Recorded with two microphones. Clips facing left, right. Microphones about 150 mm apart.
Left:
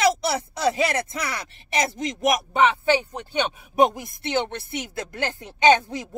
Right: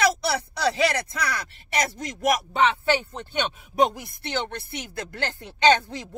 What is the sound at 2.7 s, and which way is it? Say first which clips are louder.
A woman's voice: left 2 dB; 10° left (ahead or behind).